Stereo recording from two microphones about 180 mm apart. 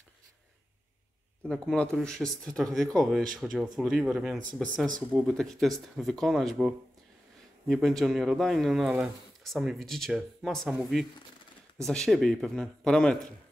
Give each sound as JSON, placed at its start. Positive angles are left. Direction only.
{"t": 1.5, "sound": "speech", "side_deg": 5}